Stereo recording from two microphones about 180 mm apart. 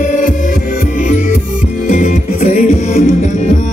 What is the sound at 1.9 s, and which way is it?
Music, 40° left (ahead or behind).